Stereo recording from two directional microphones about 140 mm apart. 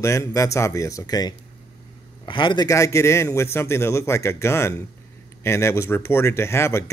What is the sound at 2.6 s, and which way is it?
A man's voice, 20° left (ahead or behind).